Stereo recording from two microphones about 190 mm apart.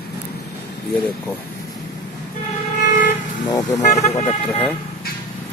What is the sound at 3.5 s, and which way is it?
Vehicle, 20° left (ahead or behind).